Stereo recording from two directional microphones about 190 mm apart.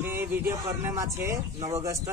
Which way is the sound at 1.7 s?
15° right (ahead or behind).